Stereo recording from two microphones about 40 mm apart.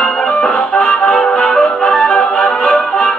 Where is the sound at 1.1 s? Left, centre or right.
Centre.